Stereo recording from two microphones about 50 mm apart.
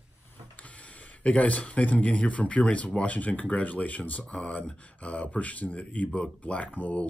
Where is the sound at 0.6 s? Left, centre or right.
Left.